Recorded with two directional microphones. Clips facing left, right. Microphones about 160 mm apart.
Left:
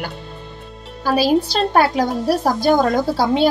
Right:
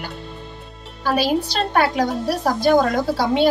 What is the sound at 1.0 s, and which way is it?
A woman's voice, 35° left (ahead or behind).